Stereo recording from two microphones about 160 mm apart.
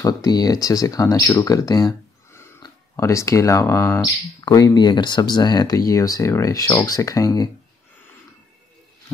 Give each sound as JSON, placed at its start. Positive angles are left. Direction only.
{"t": 0.0, "sound": "speech", "side_deg": 25}